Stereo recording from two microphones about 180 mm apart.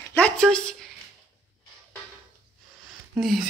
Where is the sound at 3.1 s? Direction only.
Centre (ahead or behind).